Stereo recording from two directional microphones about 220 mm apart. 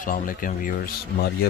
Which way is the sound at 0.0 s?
40° left (ahead or behind).